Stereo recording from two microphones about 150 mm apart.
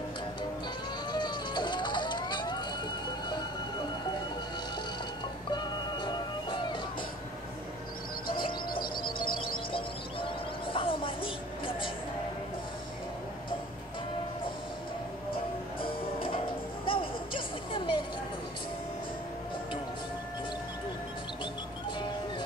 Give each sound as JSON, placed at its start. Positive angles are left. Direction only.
{"t": 1.1, "sound": "music", "side_deg": 30}
{"t": 5.5, "sound": "music", "side_deg": 30}
{"t": 8.3, "sound": "bird", "side_deg": 35}
{"t": 8.7, "sound": "bird", "side_deg": 75}
{"t": 10.7, "sound": "a sound", "side_deg": 35}
{"t": 15.8, "sound": "music", "side_deg": 35}
{"t": 16.8, "sound": "a sound", "side_deg": 35}